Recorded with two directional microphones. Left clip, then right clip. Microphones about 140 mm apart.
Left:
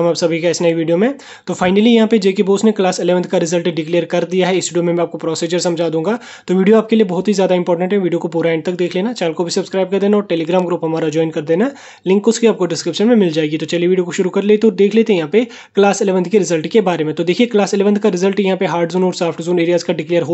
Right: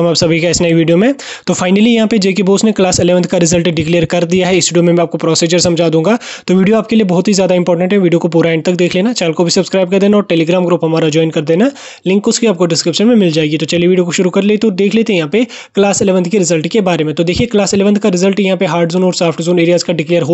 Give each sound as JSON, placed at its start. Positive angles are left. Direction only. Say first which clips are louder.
{"t": 0.0, "sound": "speech", "louder": "right 3 dB", "side_deg": -55}